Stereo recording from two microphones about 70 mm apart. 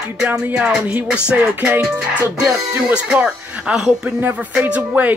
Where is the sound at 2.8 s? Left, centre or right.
Centre.